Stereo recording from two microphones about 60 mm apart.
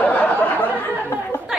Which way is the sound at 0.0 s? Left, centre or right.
Left.